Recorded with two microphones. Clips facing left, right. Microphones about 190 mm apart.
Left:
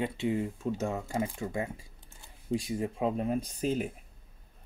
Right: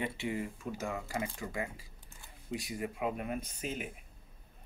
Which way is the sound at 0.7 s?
25° left (ahead or behind).